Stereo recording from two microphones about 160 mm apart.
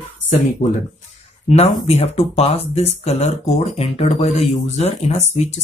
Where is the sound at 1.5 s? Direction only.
40° left (ahead or behind).